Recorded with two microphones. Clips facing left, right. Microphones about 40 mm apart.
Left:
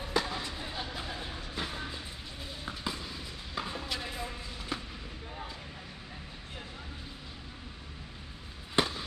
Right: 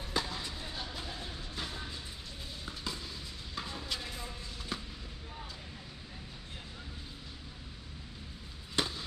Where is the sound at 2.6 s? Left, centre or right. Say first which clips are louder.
Left 4 dB; centre.